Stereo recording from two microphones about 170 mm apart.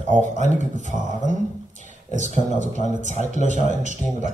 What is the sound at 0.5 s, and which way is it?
Speech, 45° right (ahead or behind).